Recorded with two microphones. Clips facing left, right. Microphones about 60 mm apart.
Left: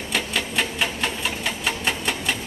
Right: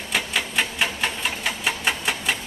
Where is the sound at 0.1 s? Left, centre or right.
Centre.